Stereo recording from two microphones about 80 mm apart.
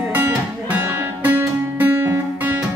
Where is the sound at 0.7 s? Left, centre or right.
Right.